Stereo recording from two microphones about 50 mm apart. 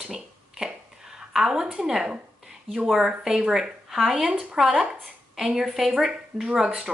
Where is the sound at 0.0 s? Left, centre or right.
Centre.